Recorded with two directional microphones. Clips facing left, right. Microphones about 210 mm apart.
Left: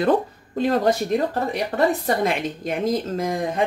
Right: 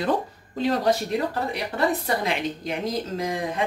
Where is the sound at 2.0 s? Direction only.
45° left (ahead or behind).